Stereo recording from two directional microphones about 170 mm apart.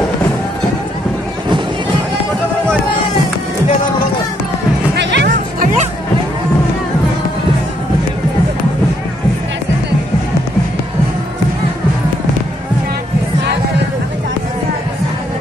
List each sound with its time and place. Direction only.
4.9 s music: 80° right